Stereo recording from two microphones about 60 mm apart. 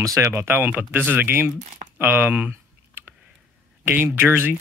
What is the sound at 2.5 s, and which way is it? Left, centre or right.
Computer keyboard, right.